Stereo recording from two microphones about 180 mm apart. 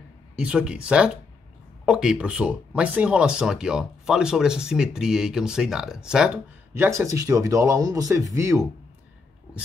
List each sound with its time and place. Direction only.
0.4 s speech: 5° right (ahead or behind)
6.7 s speech: 15° right (ahead or behind)